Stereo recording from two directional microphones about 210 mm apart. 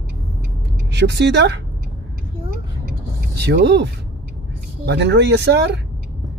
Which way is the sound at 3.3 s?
55° right (ahead or behind).